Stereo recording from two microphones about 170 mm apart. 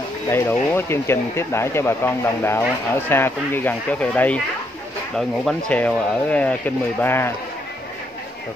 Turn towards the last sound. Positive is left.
turn(degrees=15)  # may be behind; listen again after turning